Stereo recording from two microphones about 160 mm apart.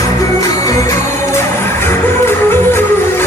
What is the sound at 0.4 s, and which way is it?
Music, 20° left (ahead or behind).